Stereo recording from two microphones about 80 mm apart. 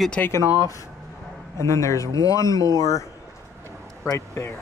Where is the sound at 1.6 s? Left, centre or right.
Left.